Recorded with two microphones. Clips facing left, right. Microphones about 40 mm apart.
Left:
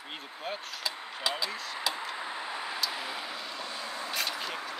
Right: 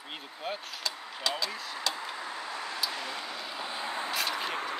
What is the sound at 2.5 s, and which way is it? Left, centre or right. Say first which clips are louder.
Vehicle: even; centre.